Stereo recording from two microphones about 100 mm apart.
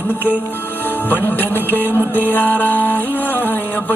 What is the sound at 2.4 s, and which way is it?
Speech, 20° left (ahead or behind).